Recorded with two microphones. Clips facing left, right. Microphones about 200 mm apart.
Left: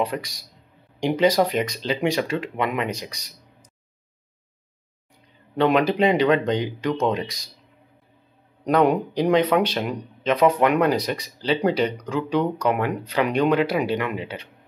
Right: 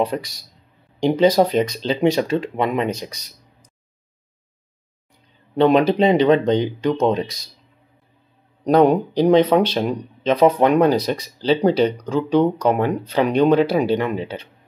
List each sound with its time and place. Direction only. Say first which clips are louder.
0.9 s speech: right 4 dB; 25° right (ahead or behind)
5.6 s speech: right 4 dB; 30° right (ahead or behind)
8.6 s speech: right 4 dB; 35° right (ahead or behind)